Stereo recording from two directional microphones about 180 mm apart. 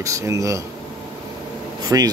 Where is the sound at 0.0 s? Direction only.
15° right (ahead or behind).